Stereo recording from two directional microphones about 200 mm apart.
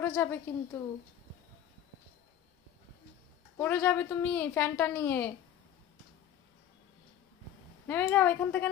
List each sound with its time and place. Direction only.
0.0 s a woman's voice: 10° left (ahead or behind)
3.5 s a woman's voice: 10° left (ahead or behind)
7.8 s a woman's voice: 10° left (ahead or behind)